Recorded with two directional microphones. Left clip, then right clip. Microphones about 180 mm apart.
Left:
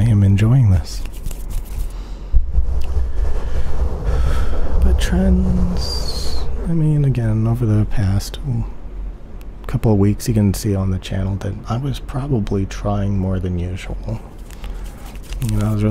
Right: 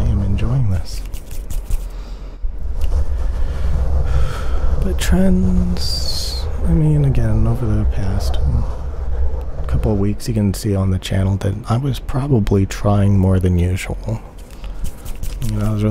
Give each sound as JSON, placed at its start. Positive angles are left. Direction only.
{"t": 0.0, "sound": "a sound", "side_deg": 25}
{"t": 4.1, "sound": "gasp", "side_deg": -5}
{"t": 5.8, "sound": "speech", "side_deg": -20}
{"t": 9.7, "sound": "speech", "side_deg": 10}
{"t": 15.4, "sound": "speech", "side_deg": 0}